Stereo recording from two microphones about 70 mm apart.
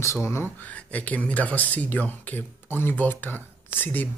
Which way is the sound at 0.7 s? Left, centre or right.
Left.